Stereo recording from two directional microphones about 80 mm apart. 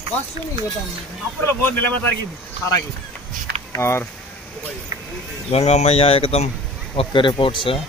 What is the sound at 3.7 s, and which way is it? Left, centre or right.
Speech, left.